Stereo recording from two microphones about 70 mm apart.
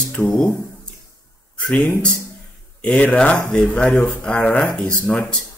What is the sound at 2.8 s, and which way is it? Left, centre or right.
Speech, centre.